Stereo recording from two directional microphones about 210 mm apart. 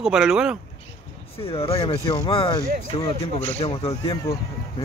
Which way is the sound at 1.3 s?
25° left (ahead or behind).